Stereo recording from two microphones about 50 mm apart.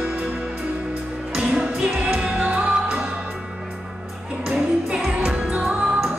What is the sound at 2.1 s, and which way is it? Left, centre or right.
Music, right.